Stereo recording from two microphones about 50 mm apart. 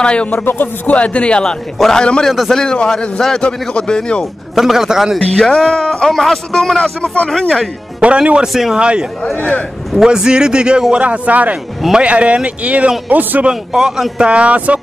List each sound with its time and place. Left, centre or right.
0.0 s speech: left
0.3 s speech: left
0.9 s speech: left
4.6 s a man's voice: centre
5.4 s speech: centre
6.8 s speech: left
7.2 s speech: centre
8.0 s speech: right
9.4 s speech: left
9.9 s a man's voice: centre; by 13.5 s right
13.5 s a man's voice: centre